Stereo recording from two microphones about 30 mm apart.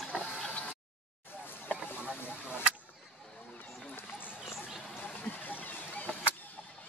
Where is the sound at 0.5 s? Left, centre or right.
Left.